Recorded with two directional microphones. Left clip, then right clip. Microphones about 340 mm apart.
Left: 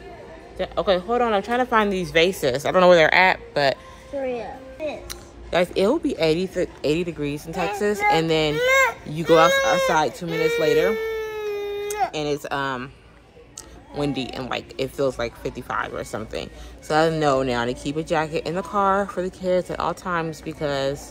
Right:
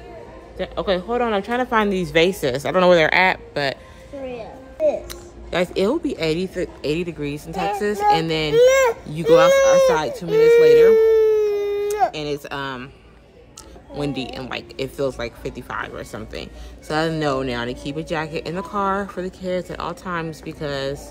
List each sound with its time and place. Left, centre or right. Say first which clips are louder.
0.6 s speech: left 1 dB; centre
4.8 s speech: right 11 dB; centre
11.0 s a sound: right 13 dB; right
12.1 s speech: left 1 dB; centre
13.9 s speech: even; centre